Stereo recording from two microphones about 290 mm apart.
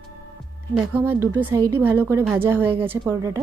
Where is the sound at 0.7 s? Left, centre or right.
Centre.